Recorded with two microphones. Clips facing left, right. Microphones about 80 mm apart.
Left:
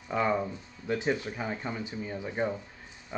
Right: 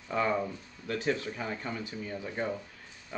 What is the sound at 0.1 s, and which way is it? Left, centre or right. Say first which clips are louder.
Speech: left 1 dB; centre.